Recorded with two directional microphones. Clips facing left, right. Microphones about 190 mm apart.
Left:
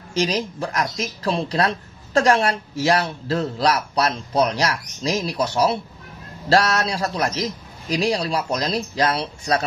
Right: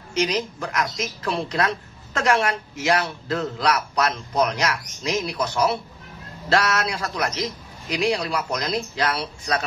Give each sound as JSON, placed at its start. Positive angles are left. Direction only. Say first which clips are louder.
{"t": 0.1, "sound": "speech", "louder": "left 1 dB", "side_deg": 35}